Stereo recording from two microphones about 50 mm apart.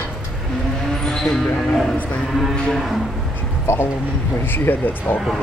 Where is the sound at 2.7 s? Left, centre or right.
Centre.